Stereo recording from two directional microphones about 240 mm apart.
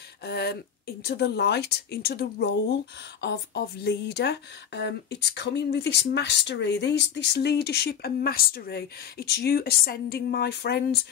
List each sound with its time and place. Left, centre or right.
0.2 s speech: left